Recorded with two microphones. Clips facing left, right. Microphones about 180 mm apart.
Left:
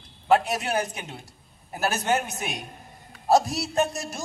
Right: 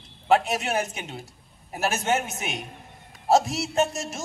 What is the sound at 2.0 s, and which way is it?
Music, centre (ahead or behind).